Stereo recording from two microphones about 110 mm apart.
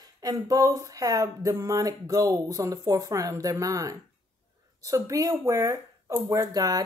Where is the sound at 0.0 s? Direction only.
35° right (ahead or behind).